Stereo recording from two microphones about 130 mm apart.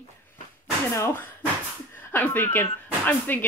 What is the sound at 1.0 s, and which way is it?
Speech, 15° left (ahead or behind).